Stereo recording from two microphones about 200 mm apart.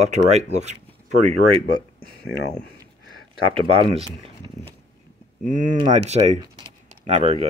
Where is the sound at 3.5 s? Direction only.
25° right (ahead or behind).